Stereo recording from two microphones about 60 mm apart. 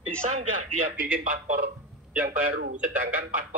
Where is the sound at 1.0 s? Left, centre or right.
Right.